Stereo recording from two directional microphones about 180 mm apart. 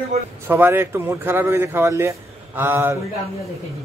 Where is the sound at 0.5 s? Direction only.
10° right (ahead or behind).